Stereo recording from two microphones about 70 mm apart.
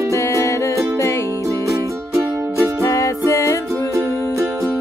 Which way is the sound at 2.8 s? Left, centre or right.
Left.